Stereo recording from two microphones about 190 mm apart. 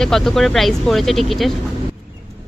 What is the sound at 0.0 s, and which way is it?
A woman's voice, centre (ahead or behind).